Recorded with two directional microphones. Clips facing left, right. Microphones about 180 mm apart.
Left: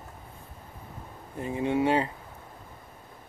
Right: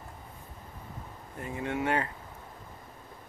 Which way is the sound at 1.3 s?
20° left (ahead or behind).